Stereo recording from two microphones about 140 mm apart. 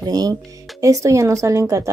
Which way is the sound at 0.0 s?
25° right (ahead or behind).